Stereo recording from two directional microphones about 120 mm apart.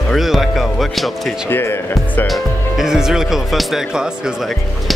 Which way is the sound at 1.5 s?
20° left (ahead or behind).